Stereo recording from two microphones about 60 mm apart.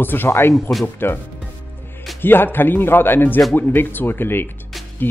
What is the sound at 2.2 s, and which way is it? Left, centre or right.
Speech, left.